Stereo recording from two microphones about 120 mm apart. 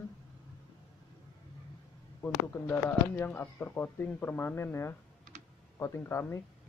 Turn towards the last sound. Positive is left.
turn(degrees=20)  # may be behind; listen again after turning